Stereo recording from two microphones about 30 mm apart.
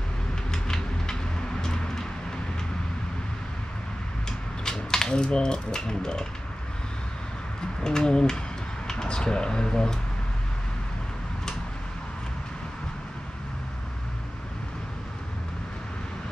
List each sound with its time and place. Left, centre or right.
0.5 s a sound: left
1.6 s vehicle: centre
4.6 s speech: left
7.8 s speech: left